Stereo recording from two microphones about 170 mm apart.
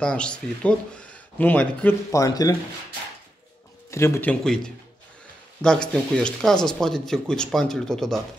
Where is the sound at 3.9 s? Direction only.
15° left (ahead or behind).